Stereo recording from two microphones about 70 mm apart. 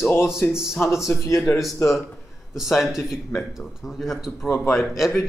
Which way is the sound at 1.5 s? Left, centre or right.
Left.